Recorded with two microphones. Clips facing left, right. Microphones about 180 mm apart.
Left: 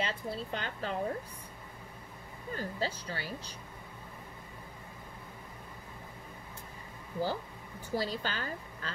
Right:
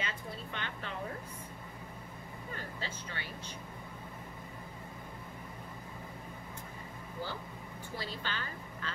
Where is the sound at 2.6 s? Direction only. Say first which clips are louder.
Left 10 dB; 35° left (ahead or behind).